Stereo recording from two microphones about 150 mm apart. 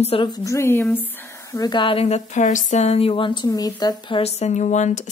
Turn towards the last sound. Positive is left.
turn(degrees=55)  # may be behind; listen again after turning